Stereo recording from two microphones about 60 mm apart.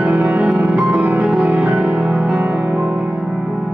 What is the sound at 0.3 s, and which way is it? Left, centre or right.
Music, right.